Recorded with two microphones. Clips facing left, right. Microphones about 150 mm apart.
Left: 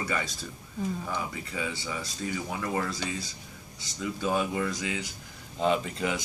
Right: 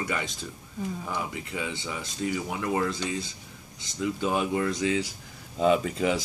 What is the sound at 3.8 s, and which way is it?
Speech, 20° right (ahead or behind).